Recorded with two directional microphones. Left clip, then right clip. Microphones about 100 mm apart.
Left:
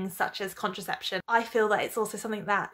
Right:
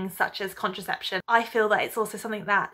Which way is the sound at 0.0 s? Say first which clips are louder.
Right 3 dB; 40° left (ahead or behind).